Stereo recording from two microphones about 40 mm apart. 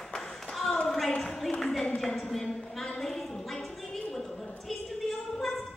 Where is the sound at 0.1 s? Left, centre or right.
Centre.